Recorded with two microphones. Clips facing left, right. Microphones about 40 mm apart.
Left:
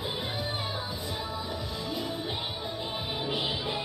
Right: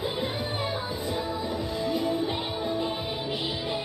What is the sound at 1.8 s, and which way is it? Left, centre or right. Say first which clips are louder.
Music: right 9 dB; centre.